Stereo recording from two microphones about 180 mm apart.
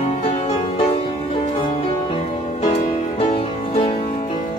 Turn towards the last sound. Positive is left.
turn(degrees=35)  # may be behind; listen again after turning